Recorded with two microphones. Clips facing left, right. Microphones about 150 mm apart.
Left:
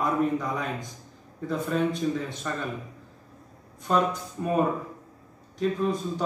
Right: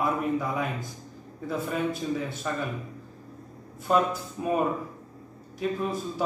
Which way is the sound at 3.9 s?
5° right (ahead or behind).